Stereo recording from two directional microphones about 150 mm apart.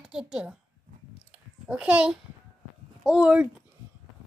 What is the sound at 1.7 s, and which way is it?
A child's voice, 10° right (ahead or behind).